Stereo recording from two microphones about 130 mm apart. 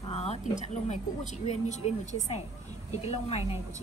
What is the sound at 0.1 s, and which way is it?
Speech, 55° left (ahead or behind).